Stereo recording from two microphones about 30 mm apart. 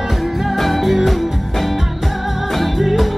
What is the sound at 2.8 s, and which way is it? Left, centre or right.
Music, centre.